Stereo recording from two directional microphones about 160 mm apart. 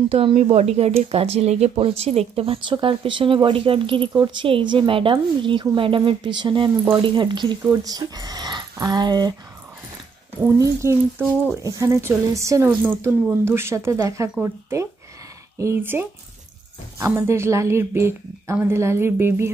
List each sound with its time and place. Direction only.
0.1 s speech: 35° right (ahead or behind)
10.4 s speech: 15° right (ahead or behind)